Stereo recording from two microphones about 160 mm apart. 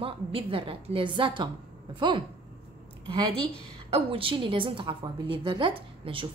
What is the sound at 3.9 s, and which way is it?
A woman's voice, 35° right (ahead or behind).